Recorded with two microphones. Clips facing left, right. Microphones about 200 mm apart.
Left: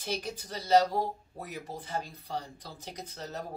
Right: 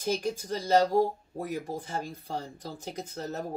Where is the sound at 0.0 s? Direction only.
45° right (ahead or behind).